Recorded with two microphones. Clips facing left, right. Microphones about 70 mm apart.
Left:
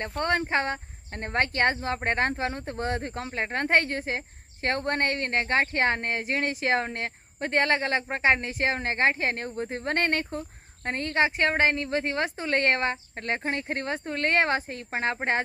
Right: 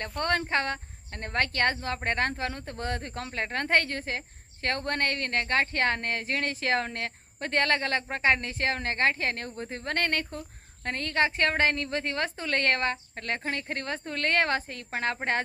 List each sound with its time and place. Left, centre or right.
0.0 s speech: left